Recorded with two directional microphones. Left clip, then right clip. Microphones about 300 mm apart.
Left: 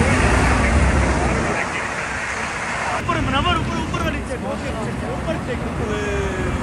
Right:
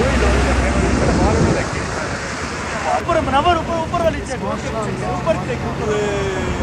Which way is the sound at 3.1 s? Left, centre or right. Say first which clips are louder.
Right 6 dB; right.